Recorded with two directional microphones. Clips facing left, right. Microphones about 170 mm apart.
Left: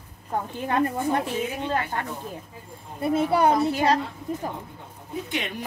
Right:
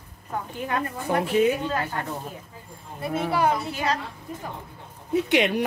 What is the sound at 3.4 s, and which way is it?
Speech, 35° left (ahead or behind).